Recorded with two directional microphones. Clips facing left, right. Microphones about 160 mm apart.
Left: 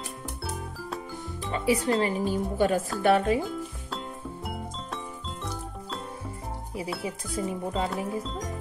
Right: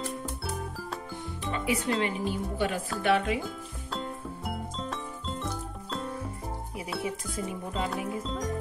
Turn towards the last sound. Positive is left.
turn(degrees=35)  # may be behind; listen again after turning